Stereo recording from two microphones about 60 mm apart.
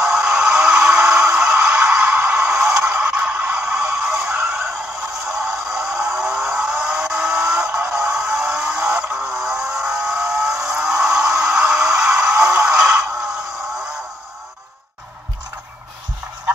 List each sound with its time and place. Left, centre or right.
0.0 s music: centre
2.2 s a sound: centre
3.5 s music: centre
5.2 s vehicle: centre